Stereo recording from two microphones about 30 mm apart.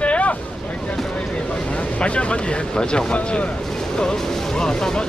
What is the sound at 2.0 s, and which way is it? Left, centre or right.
A man's voice, left.